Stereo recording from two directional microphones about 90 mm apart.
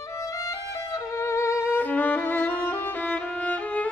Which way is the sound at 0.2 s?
40° left (ahead or behind).